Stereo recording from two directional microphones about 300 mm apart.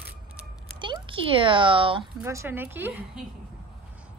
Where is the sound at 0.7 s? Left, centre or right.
Centre.